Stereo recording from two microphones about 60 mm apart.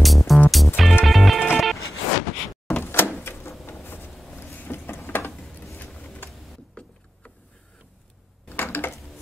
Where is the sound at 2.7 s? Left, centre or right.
Left.